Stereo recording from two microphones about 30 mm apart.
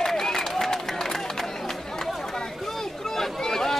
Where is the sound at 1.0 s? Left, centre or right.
Centre.